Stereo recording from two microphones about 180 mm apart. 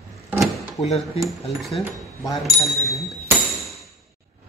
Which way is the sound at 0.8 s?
35° left (ahead or behind).